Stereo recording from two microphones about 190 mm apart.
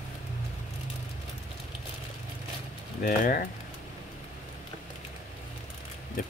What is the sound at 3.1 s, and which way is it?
Speech, 45° left (ahead or behind).